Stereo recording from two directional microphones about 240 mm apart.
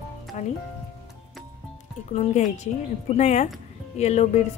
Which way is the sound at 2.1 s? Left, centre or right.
Left.